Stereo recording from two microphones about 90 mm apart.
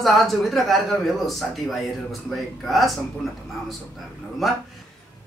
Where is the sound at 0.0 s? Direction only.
Centre (ahead or behind).